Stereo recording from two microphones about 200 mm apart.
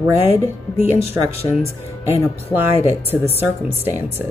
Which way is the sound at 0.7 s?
30° left (ahead or behind).